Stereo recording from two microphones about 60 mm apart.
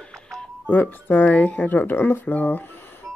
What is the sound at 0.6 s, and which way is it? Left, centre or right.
Speech, left.